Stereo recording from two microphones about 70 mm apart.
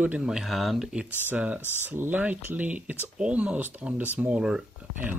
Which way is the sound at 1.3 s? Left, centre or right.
Right.